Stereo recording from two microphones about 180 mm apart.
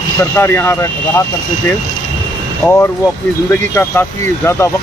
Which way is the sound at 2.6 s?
15° left (ahead or behind).